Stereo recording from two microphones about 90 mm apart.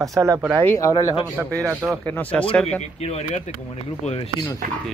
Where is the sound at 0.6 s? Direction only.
35° left (ahead or behind).